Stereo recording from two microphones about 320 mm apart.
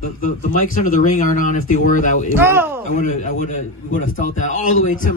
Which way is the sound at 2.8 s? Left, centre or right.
Left.